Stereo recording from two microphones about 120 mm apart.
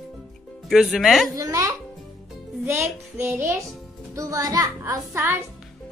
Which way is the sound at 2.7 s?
20° right (ahead or behind).